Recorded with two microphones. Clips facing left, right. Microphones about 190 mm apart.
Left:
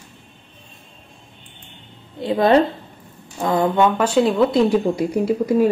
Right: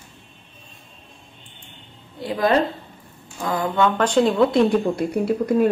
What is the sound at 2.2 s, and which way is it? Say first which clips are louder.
Speech: left 4 dB; 25° left (ahead or behind).